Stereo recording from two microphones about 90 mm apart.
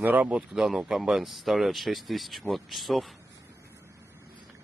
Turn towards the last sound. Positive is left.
turn(degrees=0)  # may be behind; listen again after turning